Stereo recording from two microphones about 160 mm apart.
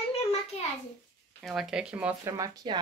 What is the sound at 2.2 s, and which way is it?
Speech, 25° right (ahead or behind).